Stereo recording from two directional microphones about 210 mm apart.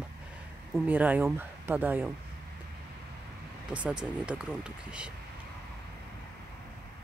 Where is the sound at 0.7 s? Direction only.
10° right (ahead or behind).